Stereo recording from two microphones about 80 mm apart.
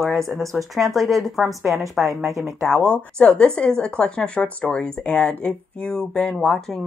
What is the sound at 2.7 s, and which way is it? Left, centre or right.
Speech, right.